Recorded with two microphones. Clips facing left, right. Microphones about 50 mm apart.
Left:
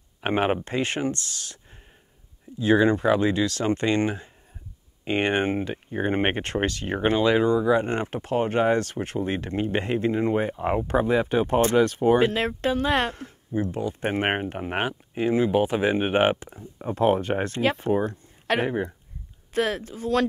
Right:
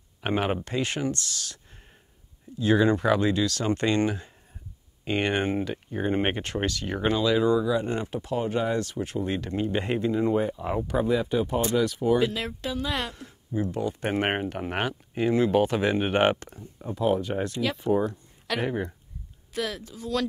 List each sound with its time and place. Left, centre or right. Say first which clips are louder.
0.2 s speech: left 3 dB; left
2.6 s speech: left 2 dB; left
13.7 s speech: left 1 dB; centre
16.7 s speech: left 3 dB; left
18.7 s speech: left 2 dB; centre
19.5 s speech: left 6 dB; left